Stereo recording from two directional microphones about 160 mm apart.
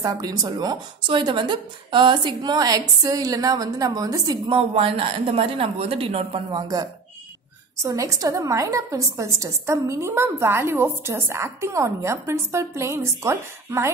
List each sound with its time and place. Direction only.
0.0 s a woman's voice: 25° right (ahead or behind)
6.5 s a woman's voice: 25° right (ahead or behind)